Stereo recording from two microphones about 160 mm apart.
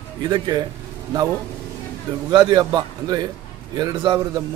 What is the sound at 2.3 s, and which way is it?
A man's voice, 25° right (ahead or behind).